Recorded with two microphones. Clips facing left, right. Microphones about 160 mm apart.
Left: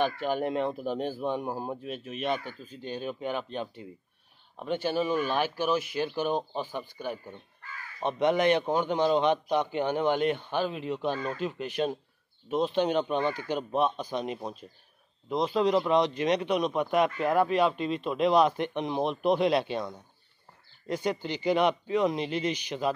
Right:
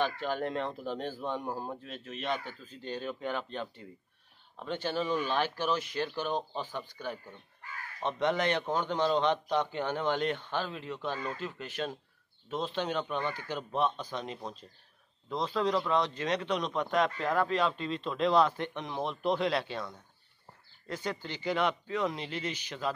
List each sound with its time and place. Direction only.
0.0 s speech: 15° left (ahead or behind)